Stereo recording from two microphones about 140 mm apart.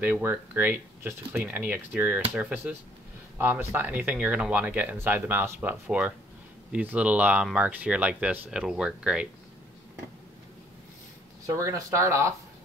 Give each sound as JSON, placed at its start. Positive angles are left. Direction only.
{"t": 0.0, "sound": "speech", "side_deg": -15}
{"t": 11.5, "sound": "speech", "side_deg": -20}